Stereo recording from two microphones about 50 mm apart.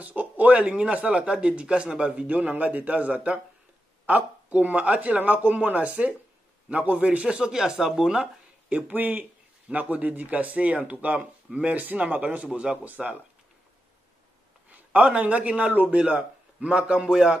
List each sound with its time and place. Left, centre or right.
0.0 s speech: right; by 8.3 s centre
8.6 s speech: right
12.4 s speech: centre
12.8 s speech: right
14.7 s a man's voice: right
16.0 s speech: right